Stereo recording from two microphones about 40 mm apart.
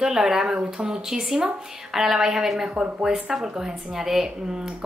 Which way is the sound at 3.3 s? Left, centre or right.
Centre.